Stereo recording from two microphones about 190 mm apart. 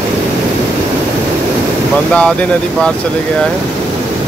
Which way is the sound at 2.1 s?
5° left (ahead or behind).